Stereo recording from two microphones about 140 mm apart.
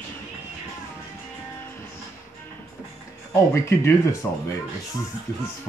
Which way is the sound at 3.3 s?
20° left (ahead or behind).